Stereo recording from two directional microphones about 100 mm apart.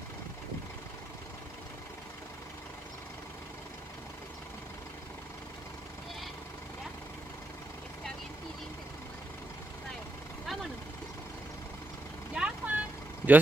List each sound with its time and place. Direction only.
10.4 s vehicle: centre (ahead or behind)
12.4 s vehicle: 15° right (ahead or behind)